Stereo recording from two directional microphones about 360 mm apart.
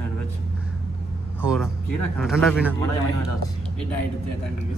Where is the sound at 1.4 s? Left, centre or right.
Centre.